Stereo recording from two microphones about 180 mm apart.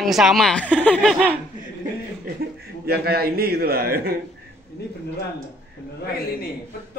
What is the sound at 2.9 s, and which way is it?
A man's voice, 60° right (ahead or behind).